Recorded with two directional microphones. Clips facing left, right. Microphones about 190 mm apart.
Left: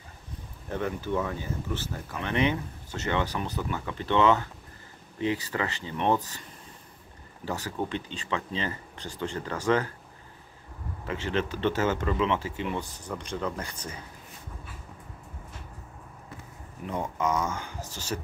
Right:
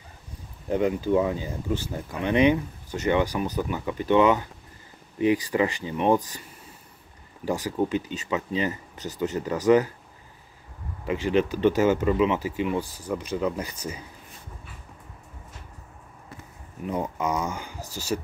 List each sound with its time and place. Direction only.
0.7 s speech: 15° right (ahead or behind)
7.4 s speech: 10° right (ahead or behind)
11.1 s speech: 10° right (ahead or behind)
16.9 s speech: 10° right (ahead or behind)